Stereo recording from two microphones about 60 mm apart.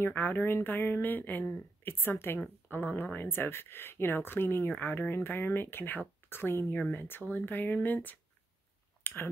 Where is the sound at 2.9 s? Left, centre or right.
Left.